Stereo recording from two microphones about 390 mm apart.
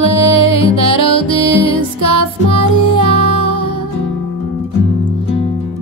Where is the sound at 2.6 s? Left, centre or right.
Right.